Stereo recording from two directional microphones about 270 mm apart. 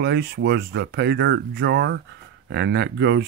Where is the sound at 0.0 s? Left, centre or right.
Right.